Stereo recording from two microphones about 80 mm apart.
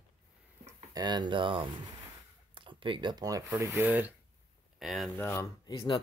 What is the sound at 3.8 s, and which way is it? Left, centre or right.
Speech, centre.